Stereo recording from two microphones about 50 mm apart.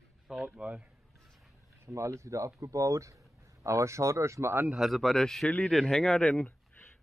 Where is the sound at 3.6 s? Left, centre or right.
Right.